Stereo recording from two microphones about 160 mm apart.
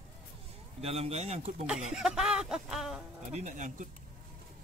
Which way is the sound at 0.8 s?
40° right (ahead or behind).